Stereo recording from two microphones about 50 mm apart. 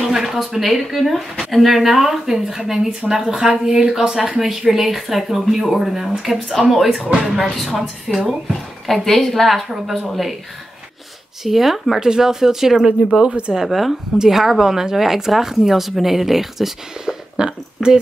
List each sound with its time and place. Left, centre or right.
0.0 s a woman's voice: centre
11.4 s a woman's voice: centre
13.3 s speech: right
13.6 s a woman's voice: centre
17.8 s speech: centre